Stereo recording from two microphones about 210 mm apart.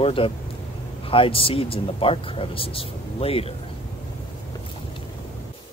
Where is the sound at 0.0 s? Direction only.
25° left (ahead or behind).